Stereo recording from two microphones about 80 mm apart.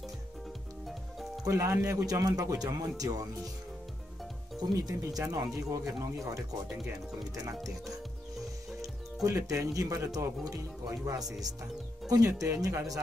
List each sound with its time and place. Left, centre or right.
1.4 s speech: right
4.6 s speech: right
8.8 s speech: right